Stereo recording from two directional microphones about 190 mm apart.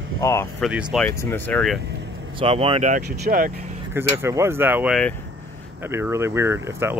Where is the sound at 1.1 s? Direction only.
15° left (ahead or behind).